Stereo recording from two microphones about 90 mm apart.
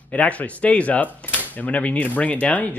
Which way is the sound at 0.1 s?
15° left (ahead or behind).